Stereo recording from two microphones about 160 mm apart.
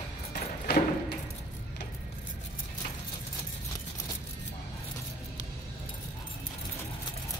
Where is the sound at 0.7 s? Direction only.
90° left.